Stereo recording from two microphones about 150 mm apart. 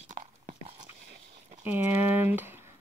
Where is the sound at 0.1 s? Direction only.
55° right (ahead or behind).